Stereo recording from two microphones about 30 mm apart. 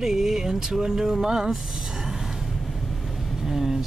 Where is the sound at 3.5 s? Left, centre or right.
Centre.